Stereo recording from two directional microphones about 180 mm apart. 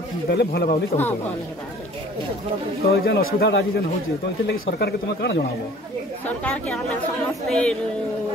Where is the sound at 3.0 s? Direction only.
70° left (ahead or behind).